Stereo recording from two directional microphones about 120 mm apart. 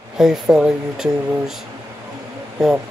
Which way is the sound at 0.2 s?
5° right (ahead or behind).